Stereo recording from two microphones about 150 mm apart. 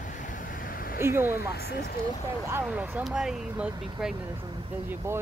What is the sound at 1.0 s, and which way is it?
Speech, 15° right (ahead or behind).